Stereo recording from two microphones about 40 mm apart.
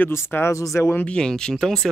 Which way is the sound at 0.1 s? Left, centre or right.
Left.